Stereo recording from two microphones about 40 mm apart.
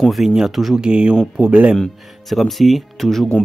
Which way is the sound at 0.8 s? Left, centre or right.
Right.